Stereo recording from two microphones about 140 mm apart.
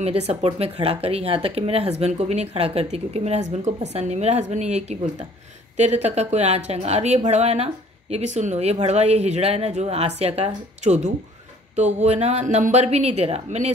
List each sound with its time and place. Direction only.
0.0 s a woman's voice: 45° right (ahead or behind)